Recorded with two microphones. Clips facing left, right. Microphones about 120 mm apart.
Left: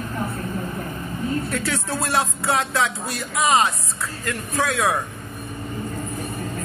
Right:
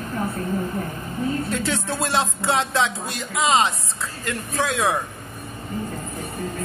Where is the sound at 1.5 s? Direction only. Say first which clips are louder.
Right 1 dB; 20° right (ahead or behind).